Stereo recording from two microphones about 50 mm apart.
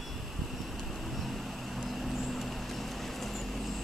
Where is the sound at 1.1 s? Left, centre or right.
Centre.